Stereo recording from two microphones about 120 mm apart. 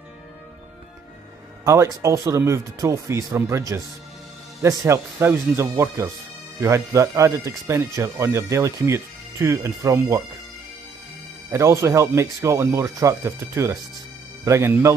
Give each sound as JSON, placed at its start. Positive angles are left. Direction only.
{"t": 1.6, "sound": "speech", "side_deg": -25}
{"t": 11.5, "sound": "speech", "side_deg": -25}